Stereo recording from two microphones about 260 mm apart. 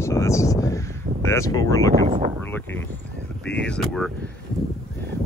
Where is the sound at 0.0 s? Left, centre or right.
Centre.